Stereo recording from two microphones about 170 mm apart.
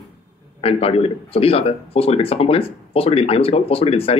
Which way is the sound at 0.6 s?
35° left (ahead or behind).